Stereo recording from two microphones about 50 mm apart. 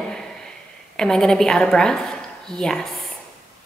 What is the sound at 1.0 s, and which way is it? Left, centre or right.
A woman's voice, centre.